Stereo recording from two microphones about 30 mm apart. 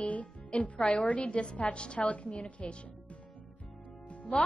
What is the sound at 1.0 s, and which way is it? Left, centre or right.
A woman's voice, left.